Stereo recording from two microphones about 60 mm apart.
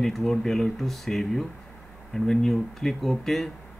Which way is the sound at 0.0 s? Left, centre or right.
Centre.